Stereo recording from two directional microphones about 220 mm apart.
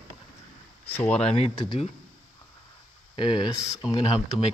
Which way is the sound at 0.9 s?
5° left (ahead or behind).